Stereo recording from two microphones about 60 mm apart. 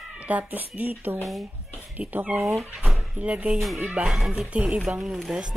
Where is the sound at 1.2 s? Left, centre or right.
Centre.